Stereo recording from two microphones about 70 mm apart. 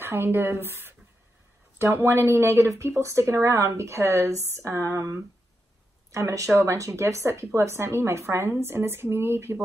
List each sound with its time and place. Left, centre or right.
0.0 s speech: right